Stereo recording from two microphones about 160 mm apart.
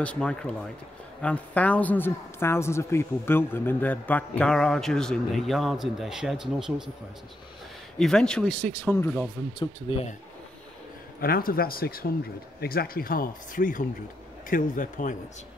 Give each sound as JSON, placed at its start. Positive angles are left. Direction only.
{"t": 0.0, "sound": "a man's voice", "side_deg": 5}
{"t": 8.0, "sound": "a man's voice", "side_deg": 5}
{"t": 9.6, "sound": "speech", "side_deg": 35}
{"t": 11.1, "sound": "speech", "side_deg": 70}